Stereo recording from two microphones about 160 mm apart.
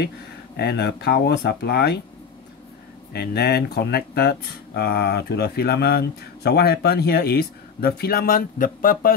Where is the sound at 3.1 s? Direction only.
80° left; by 9.1 s 60° left (ahead or behind).